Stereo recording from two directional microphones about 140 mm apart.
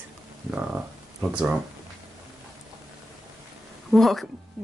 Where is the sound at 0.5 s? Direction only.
10° right (ahead or behind).